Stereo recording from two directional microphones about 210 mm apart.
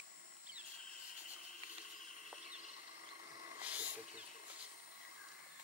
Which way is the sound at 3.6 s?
5° right (ahead or behind).